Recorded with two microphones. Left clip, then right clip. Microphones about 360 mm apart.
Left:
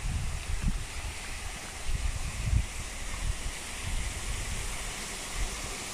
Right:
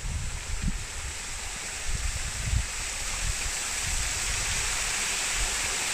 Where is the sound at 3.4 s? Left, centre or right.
Right.